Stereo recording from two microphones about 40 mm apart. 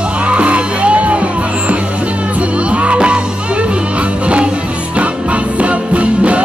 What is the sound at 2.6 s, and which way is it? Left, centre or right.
Music, right.